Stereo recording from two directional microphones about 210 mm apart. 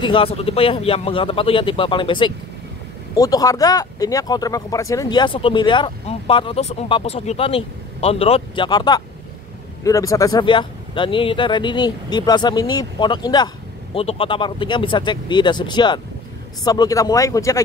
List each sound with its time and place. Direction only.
0.0 s speech: 25° left (ahead or behind)